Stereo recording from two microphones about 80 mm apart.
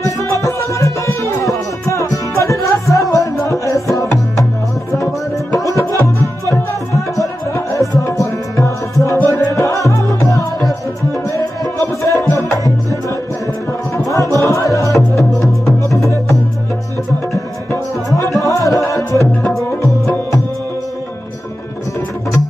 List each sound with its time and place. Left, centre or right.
0.0 s music: left
5.8 s music: left
9.5 s music: left
14.0 s music: left
18.4 s music: left